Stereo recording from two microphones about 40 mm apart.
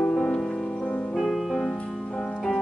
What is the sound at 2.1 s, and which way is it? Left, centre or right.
Music, left.